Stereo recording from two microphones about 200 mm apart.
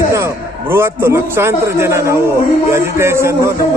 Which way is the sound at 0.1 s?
15° right (ahead or behind).